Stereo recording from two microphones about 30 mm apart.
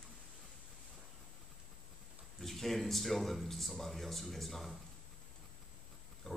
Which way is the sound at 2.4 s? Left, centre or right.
Centre.